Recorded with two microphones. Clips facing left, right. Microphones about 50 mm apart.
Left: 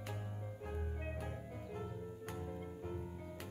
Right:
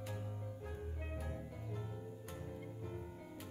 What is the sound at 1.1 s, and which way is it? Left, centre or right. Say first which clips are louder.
Music: left 1 dB; left.